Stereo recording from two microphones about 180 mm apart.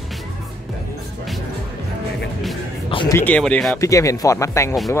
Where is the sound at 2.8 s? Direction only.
30° left (ahead or behind).